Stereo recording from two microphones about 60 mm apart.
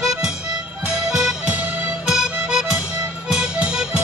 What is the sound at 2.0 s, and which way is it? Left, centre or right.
Music, centre.